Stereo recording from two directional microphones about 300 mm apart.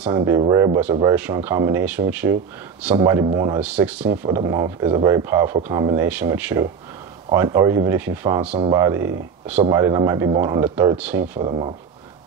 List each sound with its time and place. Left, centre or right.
0.0 s speech: centre
11.4 s speech: centre